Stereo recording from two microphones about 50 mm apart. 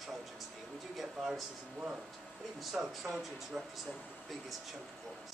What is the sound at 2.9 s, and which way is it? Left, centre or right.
Speech, centre.